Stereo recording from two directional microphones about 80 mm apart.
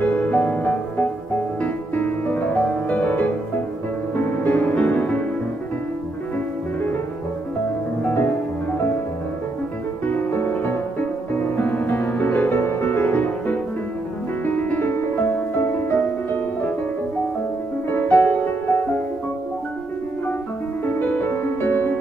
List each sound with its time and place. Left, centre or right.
0.0 s music: centre
10.0 s music: left
17.8 s music: left
20.8 s music: centre